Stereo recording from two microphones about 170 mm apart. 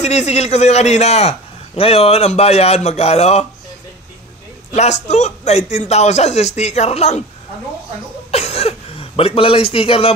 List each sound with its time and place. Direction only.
0.0 s a man's voice: 40° left (ahead or behind)
4.7 s a man's voice: 40° left (ahead or behind)
8.3 s speech: 40° left (ahead or behind)